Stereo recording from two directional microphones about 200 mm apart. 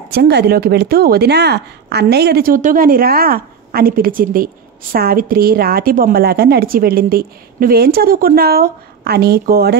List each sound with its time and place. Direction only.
0.1 s a woman's voice: 55° right (ahead or behind)